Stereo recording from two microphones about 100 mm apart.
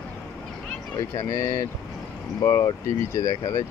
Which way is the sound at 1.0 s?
35° left (ahead or behind).